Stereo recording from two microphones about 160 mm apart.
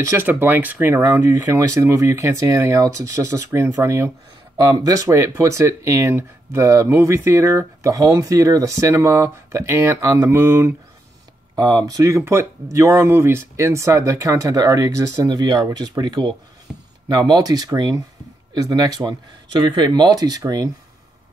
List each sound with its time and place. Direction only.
0.1 s speech: 15° right (ahead or behind)
16.7 s a sound: 5° right (ahead or behind)
17.1 s speech: 25° right (ahead or behind)